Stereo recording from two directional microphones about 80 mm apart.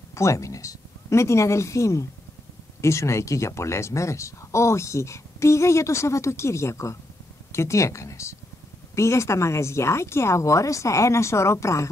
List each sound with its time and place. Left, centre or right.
0.1 s speech: left